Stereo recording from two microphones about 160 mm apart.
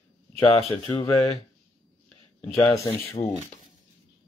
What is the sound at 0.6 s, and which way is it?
Speech, 40° left (ahead or behind).